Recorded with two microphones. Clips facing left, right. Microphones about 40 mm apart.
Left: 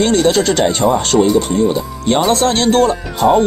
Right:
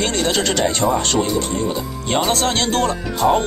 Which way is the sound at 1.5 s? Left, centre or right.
Left.